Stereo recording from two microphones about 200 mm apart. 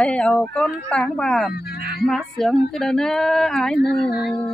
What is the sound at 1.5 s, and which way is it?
Music, 50° left (ahead or behind).